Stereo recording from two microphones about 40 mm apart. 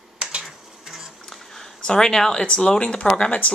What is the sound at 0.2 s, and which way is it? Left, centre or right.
Insect, right.